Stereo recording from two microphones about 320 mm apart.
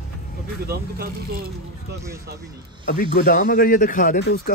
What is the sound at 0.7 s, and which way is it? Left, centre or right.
Speech, right.